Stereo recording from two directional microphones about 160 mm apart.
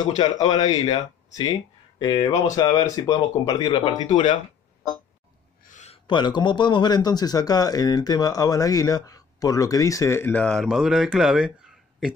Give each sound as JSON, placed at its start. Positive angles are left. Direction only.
{"t": 0.0, "sound": "speech", "side_deg": 25}
{"t": 5.6, "sound": "a sound", "side_deg": 50}
{"t": 6.0, "sound": "speech", "side_deg": 30}